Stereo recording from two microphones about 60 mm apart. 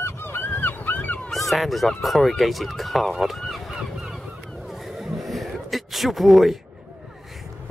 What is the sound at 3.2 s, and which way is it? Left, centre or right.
Honk, centre.